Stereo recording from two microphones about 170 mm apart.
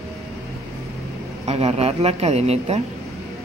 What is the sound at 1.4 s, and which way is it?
Speech, 40° right (ahead or behind).